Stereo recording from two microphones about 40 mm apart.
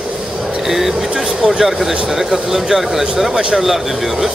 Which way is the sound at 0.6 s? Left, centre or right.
Centre.